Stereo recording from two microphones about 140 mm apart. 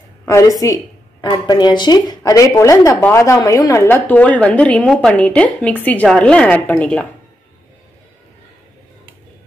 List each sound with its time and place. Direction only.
0.2 s a woman's voice: 20° left (ahead or behind)